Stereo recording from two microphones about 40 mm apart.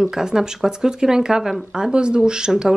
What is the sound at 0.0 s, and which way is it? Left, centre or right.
Speech, centre.